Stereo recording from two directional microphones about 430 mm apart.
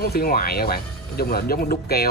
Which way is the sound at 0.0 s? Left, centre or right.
Left.